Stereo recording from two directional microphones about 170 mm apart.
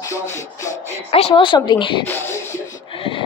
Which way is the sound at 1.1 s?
35° left (ahead or behind).